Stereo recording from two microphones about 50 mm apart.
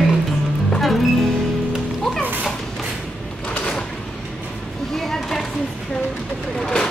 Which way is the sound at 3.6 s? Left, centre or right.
Centre.